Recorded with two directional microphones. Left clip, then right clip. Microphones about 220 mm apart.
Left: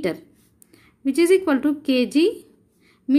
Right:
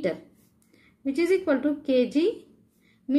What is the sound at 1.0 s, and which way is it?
A woman's voice, 40° left (ahead or behind).